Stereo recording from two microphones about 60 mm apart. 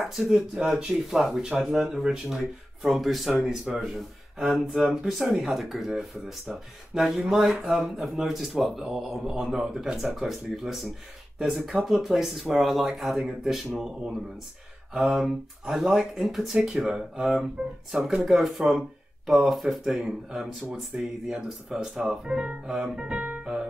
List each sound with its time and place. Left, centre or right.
0.0 s speech: centre
15.0 s speech: centre